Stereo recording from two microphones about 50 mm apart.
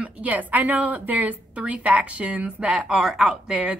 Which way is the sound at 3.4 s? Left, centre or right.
Right.